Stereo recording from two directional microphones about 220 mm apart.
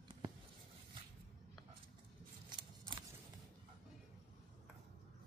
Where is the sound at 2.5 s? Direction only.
20° right (ahead or behind).